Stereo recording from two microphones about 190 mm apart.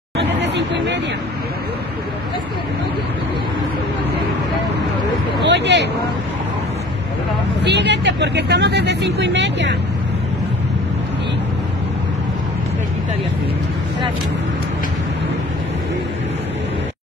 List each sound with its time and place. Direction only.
0.2 s chatter: 65° right (ahead or behind)
5.5 s a sound: 65° right (ahead or behind)
7.6 s speech: 65° right (ahead or behind)